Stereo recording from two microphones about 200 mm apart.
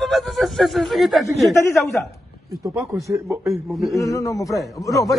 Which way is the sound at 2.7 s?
15° right (ahead or behind).